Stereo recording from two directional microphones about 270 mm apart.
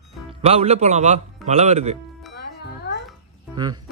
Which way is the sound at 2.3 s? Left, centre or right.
Left.